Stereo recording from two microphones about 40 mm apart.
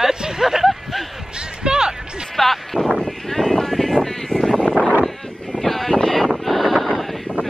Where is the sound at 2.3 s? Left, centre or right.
Centre.